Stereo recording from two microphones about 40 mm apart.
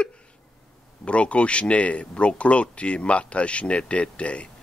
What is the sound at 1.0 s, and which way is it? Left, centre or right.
Speech, left.